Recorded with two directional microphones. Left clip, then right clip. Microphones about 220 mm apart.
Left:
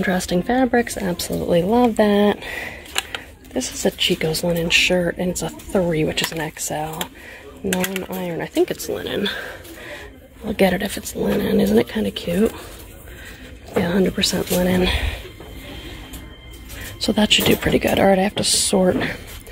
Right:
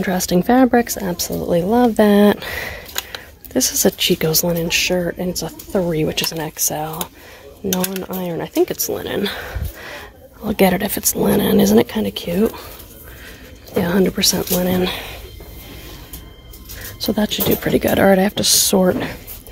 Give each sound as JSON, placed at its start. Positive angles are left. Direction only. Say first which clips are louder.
{"t": 0.0, "sound": "speech", "louder": "right 2 dB", "side_deg": -10}
{"t": 8.0, "sound": "speech", "louder": "right 2 dB", "side_deg": -15}
{"t": 13.7, "sound": "speech", "louder": "right 2 dB", "side_deg": -15}
{"t": 17.0, "sound": "speech", "louder": "left 3 dB", "side_deg": -10}
{"t": 17.7, "sound": "speech", "louder": "right 4 dB", "side_deg": -15}